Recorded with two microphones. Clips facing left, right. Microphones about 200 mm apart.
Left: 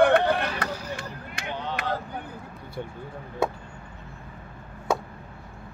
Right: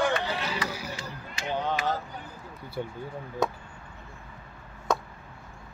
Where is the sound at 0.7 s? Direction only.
10° right (ahead or behind).